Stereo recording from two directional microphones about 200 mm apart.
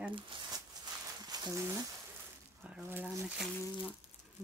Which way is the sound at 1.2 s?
20° right (ahead or behind).